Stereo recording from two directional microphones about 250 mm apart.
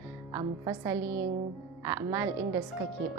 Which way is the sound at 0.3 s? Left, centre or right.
Centre.